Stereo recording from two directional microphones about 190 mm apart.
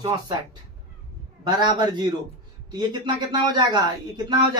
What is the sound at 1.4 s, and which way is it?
A man's voice, 20° right (ahead or behind).